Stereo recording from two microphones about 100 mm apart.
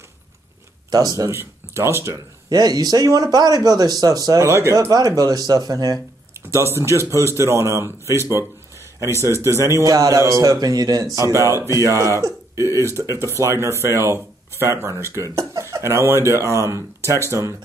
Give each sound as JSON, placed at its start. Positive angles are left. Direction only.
{"t": 0.8, "sound": "speech", "side_deg": -40}
{"t": 2.5, "sound": "speech", "side_deg": -40}
{"t": 4.7, "sound": "speech", "side_deg": -40}
{"t": 6.3, "sound": "speech", "side_deg": -25}